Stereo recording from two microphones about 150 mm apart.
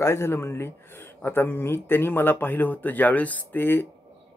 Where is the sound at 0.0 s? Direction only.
15° left (ahead or behind).